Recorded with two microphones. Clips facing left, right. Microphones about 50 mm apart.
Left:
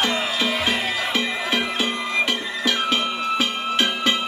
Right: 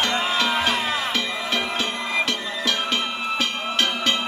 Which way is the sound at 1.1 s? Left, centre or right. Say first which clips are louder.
Left 2 dB; centre.